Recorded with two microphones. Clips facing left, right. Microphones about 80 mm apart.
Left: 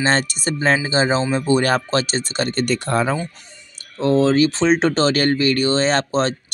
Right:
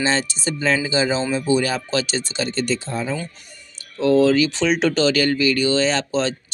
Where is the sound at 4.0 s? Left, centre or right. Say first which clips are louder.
Even; left.